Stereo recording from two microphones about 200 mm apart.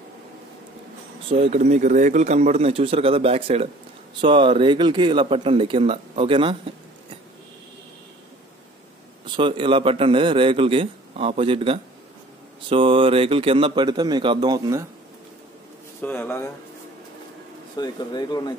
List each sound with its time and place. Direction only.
1.3 s a man's voice: 30° right (ahead or behind)
9.4 s a man's voice: 25° right (ahead or behind)
16.0 s speech: 10° left (ahead or behind)
17.7 s speech: 20° left (ahead or behind)